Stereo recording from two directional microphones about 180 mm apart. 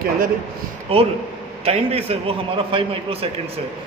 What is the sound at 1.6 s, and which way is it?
A man's voice, 35° right (ahead or behind).